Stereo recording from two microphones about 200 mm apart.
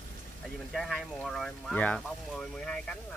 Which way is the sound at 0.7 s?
Centre (ahead or behind).